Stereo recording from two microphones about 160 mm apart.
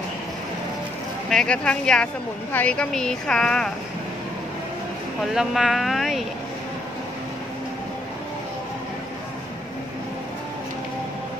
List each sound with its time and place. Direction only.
1.3 s speech: 5° left (ahead or behind)
5.3 s speech: centre (ahead or behind)